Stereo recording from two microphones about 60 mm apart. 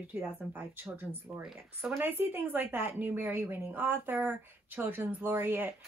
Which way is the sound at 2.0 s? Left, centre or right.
Right.